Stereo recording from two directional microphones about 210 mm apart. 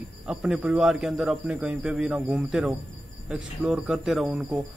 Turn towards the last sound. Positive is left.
turn(degrees=-5)  # may be behind; listen again after turning